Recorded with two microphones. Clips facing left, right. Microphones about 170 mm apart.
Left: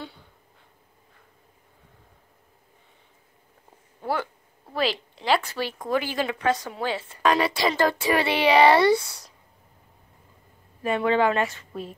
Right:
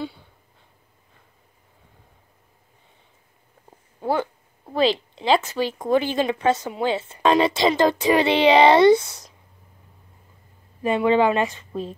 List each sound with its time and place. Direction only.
4.0 s a sound: 20° right (ahead or behind)
4.7 s a woman's voice: 20° right (ahead or behind)
10.8 s a woman's voice: 20° right (ahead or behind)